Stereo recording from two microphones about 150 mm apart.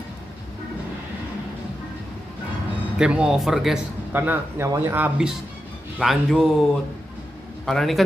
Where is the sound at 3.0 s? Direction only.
5° right (ahead or behind).